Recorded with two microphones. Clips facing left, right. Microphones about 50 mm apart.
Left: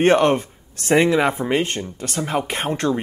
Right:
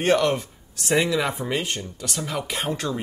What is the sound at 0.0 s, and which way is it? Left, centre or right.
Speech, left.